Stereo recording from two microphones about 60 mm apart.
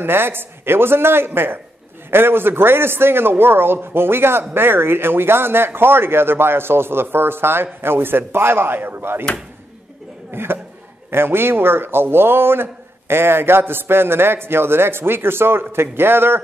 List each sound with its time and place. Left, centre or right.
0.0 s a man's voice: right
10.3 s a man's voice: right